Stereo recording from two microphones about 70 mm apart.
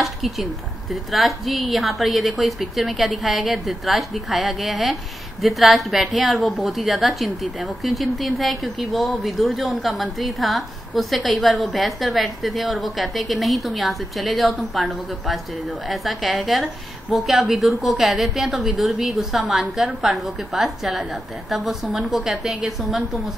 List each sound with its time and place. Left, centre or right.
0.0 s a woman's voice: centre